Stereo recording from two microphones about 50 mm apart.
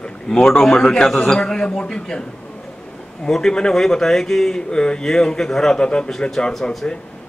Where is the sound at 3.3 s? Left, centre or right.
Centre.